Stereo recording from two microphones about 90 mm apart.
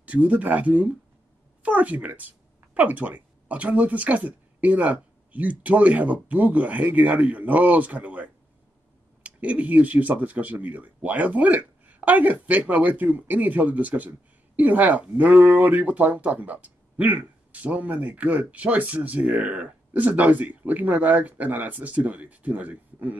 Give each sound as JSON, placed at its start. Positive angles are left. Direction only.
{"t": 0.0, "sound": "speech", "side_deg": -15}